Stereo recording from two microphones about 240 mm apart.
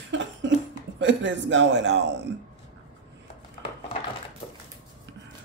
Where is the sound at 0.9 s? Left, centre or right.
Right.